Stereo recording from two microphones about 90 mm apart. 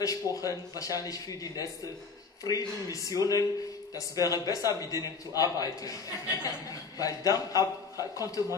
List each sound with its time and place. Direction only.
0.0 s a man's voice: 40° left (ahead or behind)